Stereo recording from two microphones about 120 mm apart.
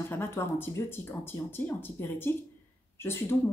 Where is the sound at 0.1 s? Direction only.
20° left (ahead or behind).